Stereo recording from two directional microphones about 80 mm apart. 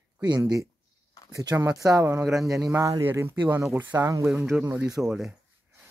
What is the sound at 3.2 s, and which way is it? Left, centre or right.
Speech, right.